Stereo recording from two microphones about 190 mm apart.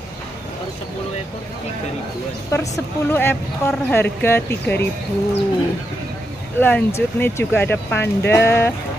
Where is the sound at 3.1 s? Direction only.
10° left (ahead or behind).